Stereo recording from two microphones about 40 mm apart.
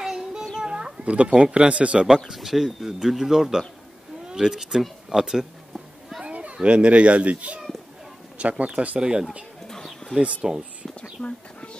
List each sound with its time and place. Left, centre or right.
0.0 s child singing: centre
0.6 s a sound: centre
1.0 s speech: right
2.0 s speech: centre
6.2 s a child's voice: right
9.7 s bird: centre
10.4 s speech: centre
11.2 s speech: left